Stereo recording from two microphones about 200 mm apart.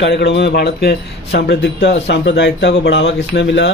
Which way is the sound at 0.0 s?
60° left (ahead or behind).